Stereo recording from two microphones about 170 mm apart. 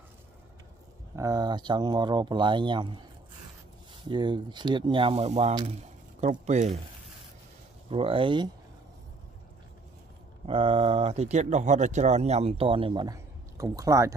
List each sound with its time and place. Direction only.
1.1 s speech: 20° right (ahead or behind)
4.1 s speech: 25° right (ahead or behind)
5.5 s speech: 25° right (ahead or behind)
6.2 s speech: 40° right (ahead or behind)
7.9 s speech: 30° right (ahead or behind)
10.4 s speech: 35° right (ahead or behind)